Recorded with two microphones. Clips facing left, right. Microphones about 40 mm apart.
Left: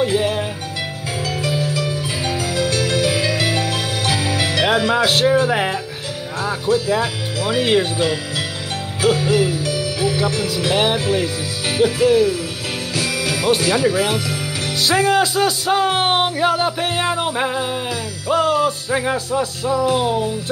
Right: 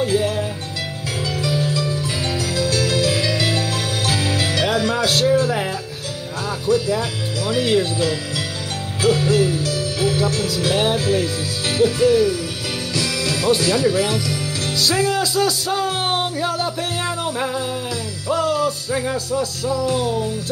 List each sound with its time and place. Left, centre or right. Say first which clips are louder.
0.0 s music: left 1 dB; left
6.4 s speech: left 1 dB; left
9.0 s music: even; left
9.7 s speech: left 1 dB; left
12.9 s music: left 1 dB; left
14.8 s speech: left 4 dB; left